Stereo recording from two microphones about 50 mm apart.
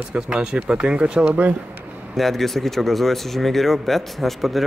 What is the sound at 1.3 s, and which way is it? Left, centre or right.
Speech, right.